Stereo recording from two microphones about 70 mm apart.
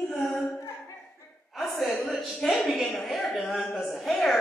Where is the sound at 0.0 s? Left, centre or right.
Centre.